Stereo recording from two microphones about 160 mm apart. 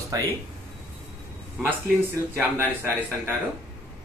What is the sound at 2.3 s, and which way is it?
Speech, 15° right (ahead or behind).